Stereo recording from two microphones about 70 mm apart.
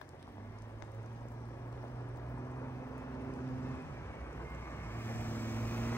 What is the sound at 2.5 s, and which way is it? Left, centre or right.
Vehicle, left.